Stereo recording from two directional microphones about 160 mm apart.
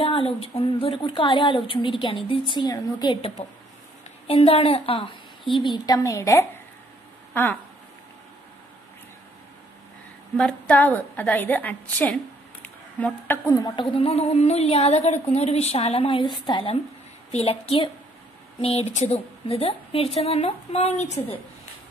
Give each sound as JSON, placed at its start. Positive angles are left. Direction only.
{"t": 0.0, "sound": "a woman's voice", "side_deg": 35}
{"t": 10.3, "sound": "a woman's voice", "side_deg": 5}